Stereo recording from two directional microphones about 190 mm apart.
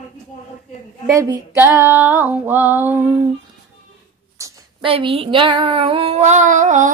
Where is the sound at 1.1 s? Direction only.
15° right (ahead or behind).